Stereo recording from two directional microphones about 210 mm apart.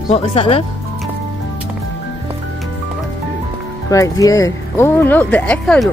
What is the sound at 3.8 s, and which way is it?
Speech, 15° left (ahead or behind).